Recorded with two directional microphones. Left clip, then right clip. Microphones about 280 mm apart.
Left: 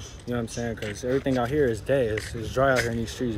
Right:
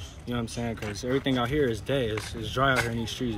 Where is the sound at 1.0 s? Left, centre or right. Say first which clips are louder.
Left 2 dB; centre.